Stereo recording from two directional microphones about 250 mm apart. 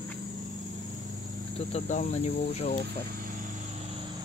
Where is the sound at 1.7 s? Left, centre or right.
Left.